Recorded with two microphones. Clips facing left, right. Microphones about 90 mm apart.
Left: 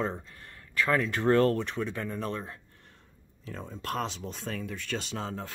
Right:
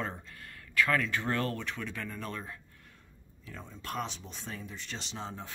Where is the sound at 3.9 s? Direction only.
55° left (ahead or behind).